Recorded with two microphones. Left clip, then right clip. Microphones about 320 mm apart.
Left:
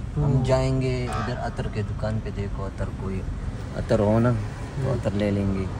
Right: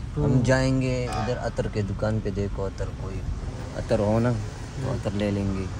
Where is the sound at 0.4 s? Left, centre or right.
Right.